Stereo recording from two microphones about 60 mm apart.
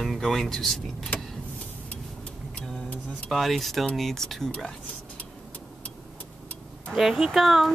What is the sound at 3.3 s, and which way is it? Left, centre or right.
Speech, centre.